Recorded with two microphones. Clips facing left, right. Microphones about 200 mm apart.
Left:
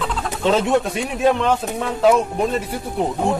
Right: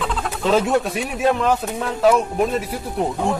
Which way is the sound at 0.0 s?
Centre (ahead or behind).